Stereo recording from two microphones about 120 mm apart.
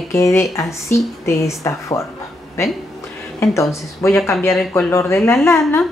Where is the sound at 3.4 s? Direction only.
25° left (ahead or behind).